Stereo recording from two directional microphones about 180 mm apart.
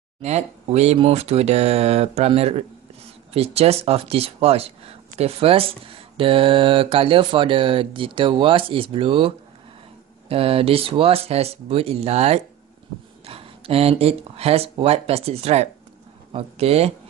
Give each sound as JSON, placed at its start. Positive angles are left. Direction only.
{"t": 0.2, "sound": "speech", "side_deg": -35}